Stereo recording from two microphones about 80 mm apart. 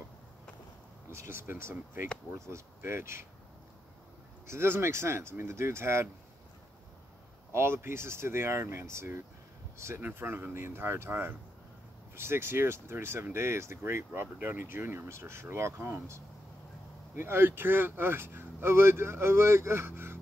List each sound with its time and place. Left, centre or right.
1.1 s speech: right
4.5 s speech: right
7.5 s speech: right